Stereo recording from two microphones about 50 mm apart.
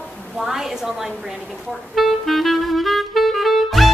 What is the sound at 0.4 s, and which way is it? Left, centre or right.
Speech, centre.